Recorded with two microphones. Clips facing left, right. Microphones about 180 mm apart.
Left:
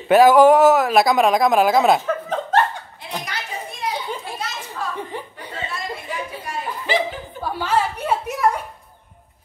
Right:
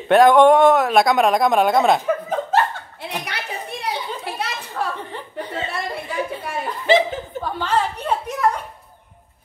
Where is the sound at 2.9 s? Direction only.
65° right (ahead or behind).